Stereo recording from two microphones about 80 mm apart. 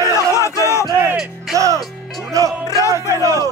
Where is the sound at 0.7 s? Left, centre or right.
Left.